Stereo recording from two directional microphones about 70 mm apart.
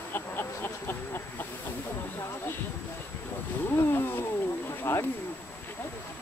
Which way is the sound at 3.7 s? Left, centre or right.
Left.